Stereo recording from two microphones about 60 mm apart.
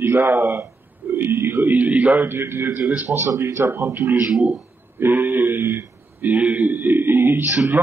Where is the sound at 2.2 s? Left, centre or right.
Right.